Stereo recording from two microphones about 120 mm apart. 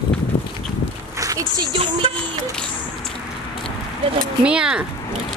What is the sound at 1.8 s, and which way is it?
Music, 50° right (ahead or behind).